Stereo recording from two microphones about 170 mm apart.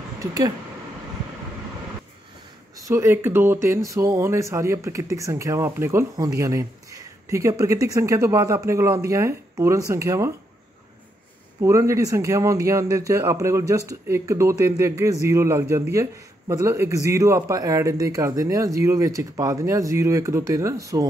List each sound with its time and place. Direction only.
0.2 s speech: 20° right (ahead or behind)
2.7 s speech: 15° right (ahead or behind)
11.6 s speech: 15° right (ahead or behind)